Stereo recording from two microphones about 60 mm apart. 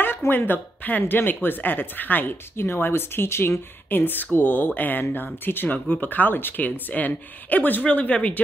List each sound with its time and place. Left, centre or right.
0.3 s speech: left